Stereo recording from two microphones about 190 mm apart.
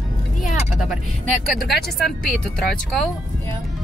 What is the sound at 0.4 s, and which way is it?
Vehicle, centre (ahead or behind).